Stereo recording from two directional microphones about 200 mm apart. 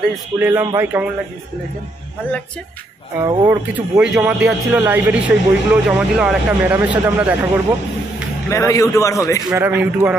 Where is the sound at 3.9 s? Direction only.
5° right (ahead or behind).